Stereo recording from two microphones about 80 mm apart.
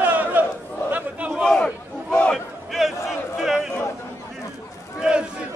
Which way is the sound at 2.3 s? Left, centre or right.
Centre.